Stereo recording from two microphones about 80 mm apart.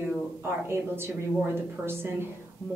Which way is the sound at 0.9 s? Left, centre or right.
Right.